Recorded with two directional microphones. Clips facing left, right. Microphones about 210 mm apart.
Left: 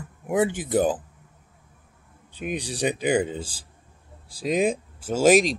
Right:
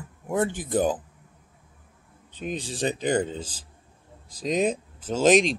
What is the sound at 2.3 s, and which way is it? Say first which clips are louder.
Speech: left 1 dB; 10° left (ahead or behind).